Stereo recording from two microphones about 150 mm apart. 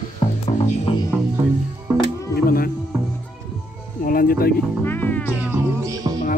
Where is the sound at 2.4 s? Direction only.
75° left (ahead or behind).